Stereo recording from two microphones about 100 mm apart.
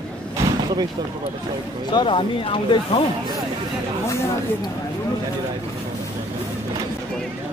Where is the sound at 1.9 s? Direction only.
55° left (ahead or behind).